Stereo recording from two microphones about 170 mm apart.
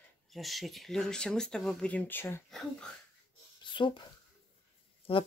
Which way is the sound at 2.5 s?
Centre (ahead or behind).